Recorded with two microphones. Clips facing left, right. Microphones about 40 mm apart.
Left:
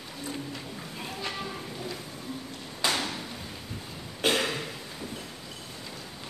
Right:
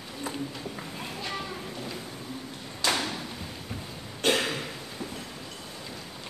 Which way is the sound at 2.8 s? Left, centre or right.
Left.